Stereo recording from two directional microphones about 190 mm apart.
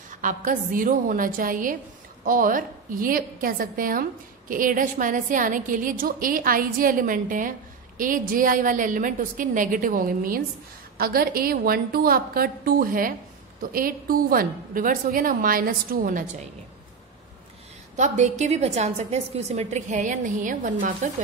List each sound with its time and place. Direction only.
0.2 s a woman's voice: 45° right (ahead or behind)
17.9 s a woman's voice: 40° right (ahead or behind)